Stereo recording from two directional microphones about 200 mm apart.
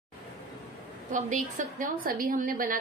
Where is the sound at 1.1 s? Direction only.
40° right (ahead or behind).